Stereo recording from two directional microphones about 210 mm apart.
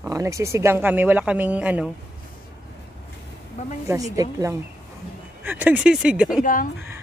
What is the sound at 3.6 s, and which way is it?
Speech, 35° left (ahead or behind).